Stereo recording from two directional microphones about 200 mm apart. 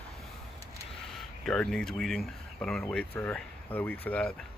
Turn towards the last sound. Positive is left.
turn(degrees=5)  # may be behind; listen again after turning